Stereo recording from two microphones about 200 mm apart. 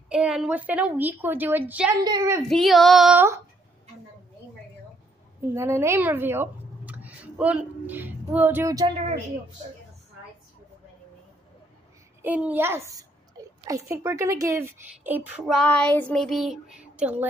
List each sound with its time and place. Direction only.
0.1 s a woman's voice: 5° right (ahead or behind)
2.4 s female singing: centre (ahead or behind)
5.5 s speech: 15° right (ahead or behind)
12.2 s a woman's voice: 10° right (ahead or behind)